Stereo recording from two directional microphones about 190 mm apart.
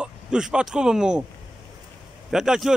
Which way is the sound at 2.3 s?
5° right (ahead or behind).